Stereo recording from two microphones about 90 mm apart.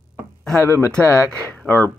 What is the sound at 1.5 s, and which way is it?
Speech, 15° left (ahead or behind).